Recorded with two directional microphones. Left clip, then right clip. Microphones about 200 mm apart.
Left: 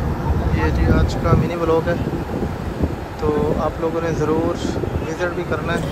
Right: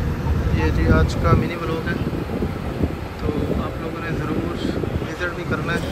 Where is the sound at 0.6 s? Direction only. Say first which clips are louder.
Right 1 dB; 5° left (ahead or behind).